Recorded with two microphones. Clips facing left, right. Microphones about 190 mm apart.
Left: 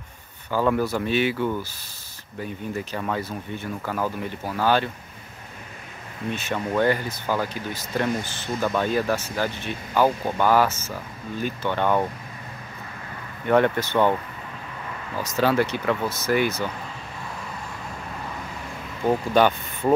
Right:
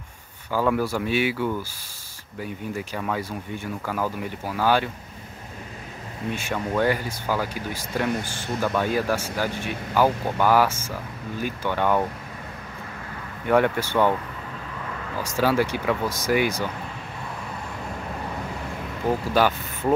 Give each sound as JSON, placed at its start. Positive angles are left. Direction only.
{"t": 0.7, "sound": "speech", "side_deg": -10}
{"t": 6.3, "sound": "speech", "side_deg": -10}
{"t": 13.5, "sound": "speech", "side_deg": -10}
{"t": 15.2, "sound": "speech", "side_deg": -10}
{"t": 19.3, "sound": "speech", "side_deg": -5}